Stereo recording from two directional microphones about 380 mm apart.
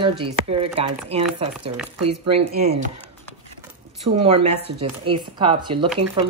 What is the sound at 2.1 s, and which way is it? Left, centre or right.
Speech, centre.